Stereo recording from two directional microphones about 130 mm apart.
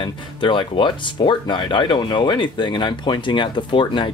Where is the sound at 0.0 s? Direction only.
40° left (ahead or behind).